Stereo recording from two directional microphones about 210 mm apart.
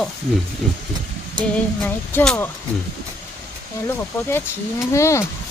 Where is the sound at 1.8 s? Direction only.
5° left (ahead or behind).